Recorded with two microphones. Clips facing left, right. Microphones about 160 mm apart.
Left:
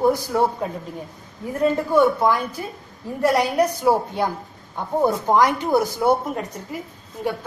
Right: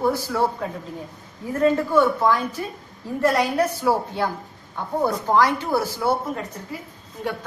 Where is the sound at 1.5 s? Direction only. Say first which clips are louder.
Even; 15° left (ahead or behind).